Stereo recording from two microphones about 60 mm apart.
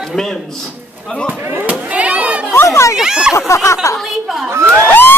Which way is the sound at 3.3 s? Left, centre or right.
Left.